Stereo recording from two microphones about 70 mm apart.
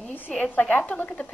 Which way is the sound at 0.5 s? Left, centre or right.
Left.